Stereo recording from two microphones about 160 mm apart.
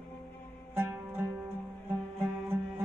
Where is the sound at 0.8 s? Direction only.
15° right (ahead or behind).